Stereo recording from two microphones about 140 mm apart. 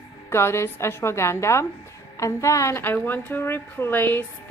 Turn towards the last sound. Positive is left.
turn(degrees=15)  # may be behind; listen again after turning